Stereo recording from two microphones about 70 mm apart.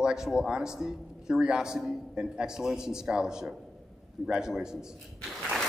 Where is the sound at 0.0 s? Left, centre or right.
Centre.